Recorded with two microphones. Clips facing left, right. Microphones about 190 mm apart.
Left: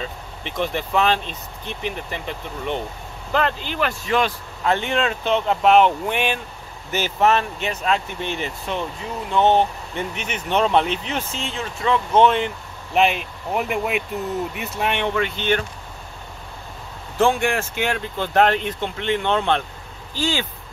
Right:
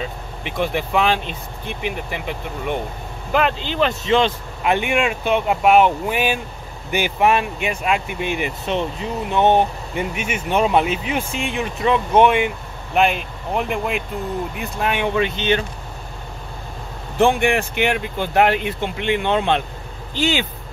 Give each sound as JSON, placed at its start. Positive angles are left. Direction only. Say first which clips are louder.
{"t": 0.0, "sound": "speech", "louder": "right 3 dB", "side_deg": -10}
{"t": 4.7, "sound": "speech", "louder": "right 2 dB", "side_deg": -15}
{"t": 15.1, "sound": "speech", "louder": "right 2 dB", "side_deg": -15}
{"t": 17.2, "sound": "speech", "louder": "right 3 dB", "side_deg": -15}